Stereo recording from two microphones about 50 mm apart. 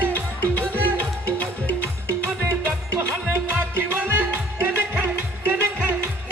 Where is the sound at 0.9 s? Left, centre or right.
Left.